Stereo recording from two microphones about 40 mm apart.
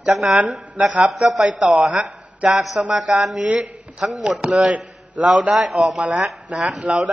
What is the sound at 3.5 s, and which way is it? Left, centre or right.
A man's voice, right.